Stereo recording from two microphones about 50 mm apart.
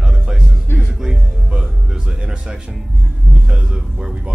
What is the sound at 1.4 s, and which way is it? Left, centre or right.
Music, centre.